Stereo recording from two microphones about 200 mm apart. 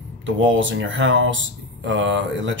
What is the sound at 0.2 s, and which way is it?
Speech, 70° right (ahead or behind).